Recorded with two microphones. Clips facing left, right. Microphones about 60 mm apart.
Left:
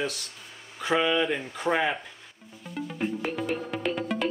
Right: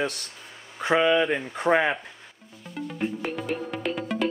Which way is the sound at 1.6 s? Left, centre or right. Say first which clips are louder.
Right 4 dB; centre.